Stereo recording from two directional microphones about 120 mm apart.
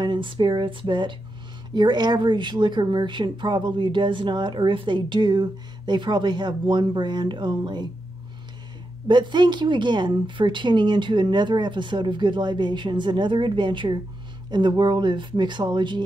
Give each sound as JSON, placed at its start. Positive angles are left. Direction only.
{"t": 0.0, "sound": "speech", "side_deg": -40}
{"t": 9.0, "sound": "speech", "side_deg": -40}